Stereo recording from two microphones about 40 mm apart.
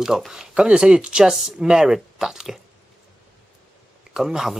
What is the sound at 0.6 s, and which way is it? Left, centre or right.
Speech, right.